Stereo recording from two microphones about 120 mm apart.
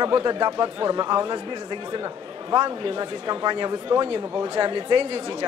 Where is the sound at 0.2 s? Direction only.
35° right (ahead or behind).